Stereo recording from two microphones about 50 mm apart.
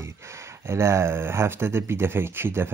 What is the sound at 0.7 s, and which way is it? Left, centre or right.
Speech, right.